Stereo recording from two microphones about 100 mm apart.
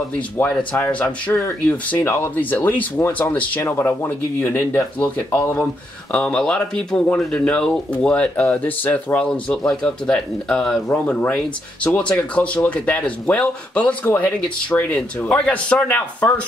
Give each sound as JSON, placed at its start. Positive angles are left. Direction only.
{"t": 0.1, "sound": "speech", "side_deg": 15}
{"t": 6.1, "sound": "speech", "side_deg": 10}